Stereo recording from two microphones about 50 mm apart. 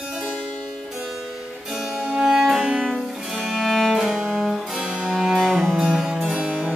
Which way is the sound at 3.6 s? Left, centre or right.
Centre.